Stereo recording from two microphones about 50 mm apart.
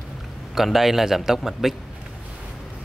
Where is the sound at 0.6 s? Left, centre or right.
Centre.